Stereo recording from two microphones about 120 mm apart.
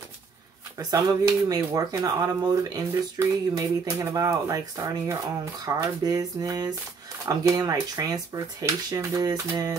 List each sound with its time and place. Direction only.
0.7 s speech: 35° right (ahead or behind)